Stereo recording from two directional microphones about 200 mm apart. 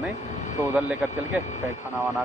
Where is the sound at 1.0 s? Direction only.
5° right (ahead or behind).